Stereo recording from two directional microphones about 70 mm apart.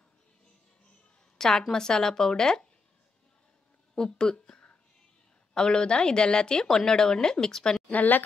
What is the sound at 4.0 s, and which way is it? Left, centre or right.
Speech, centre.